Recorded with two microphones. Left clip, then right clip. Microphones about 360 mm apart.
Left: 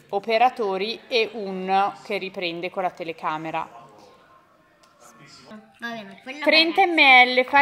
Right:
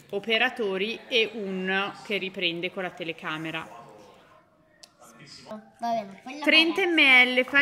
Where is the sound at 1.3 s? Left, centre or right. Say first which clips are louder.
Left 3 dB; left.